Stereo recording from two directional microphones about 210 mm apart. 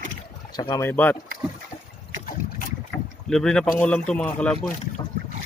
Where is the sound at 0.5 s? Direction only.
20° left (ahead or behind).